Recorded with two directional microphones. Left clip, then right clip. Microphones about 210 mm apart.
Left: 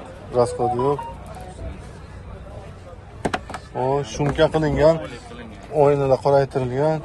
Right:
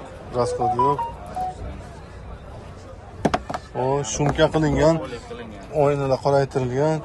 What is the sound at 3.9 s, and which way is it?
Speech, 25° right (ahead or behind).